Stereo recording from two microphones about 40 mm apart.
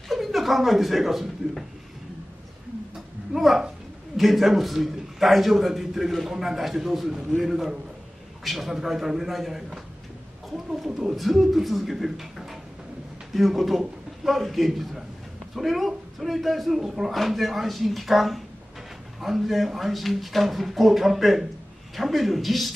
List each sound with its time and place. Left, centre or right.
0.1 s speech: centre
3.3 s a man's voice: centre